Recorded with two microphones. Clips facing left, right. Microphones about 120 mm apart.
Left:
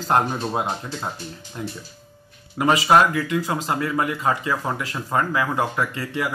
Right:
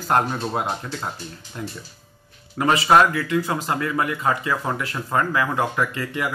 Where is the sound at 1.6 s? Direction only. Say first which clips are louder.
Left 1 dB; 25° left (ahead or behind).